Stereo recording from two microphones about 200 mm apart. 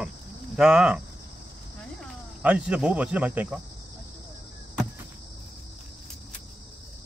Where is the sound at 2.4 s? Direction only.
5° right (ahead or behind).